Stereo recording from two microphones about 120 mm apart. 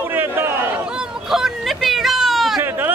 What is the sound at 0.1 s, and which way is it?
Chatter, 20° right (ahead or behind).